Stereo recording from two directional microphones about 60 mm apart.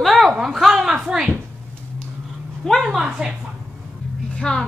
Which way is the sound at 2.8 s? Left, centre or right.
Centre.